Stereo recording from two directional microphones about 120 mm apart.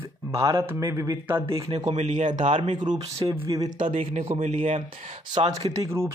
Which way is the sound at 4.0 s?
60° right (ahead or behind).